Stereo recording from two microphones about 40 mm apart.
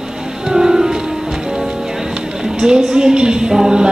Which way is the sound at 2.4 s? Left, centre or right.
Centre.